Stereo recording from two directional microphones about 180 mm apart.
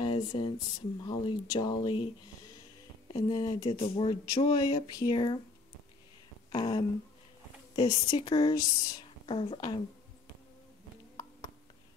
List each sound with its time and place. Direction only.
0.0 s a sound: 25° left (ahead or behind)
1.0 s speech: 25° left (ahead or behind)
3.2 s speech: 20° left (ahead or behind)
6.5 s speech: 25° left (ahead or behind)